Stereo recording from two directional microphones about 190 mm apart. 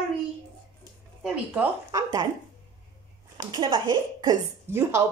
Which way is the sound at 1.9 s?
15° right (ahead or behind).